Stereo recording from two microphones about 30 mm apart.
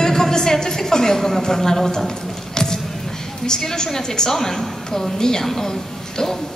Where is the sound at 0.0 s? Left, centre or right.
Centre.